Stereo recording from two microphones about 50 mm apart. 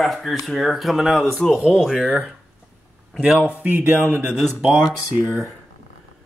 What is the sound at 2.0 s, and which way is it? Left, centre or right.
Speech, right.